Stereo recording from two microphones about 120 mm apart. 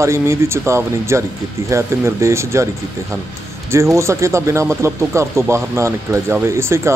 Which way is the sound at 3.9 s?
25° right (ahead or behind).